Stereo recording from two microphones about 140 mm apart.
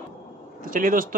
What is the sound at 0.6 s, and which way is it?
Speech, 75° right (ahead or behind).